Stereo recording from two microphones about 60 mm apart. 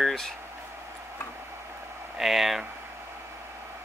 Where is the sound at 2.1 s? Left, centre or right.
Centre.